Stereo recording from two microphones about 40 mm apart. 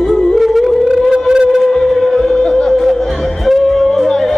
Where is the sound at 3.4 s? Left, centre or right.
Centre.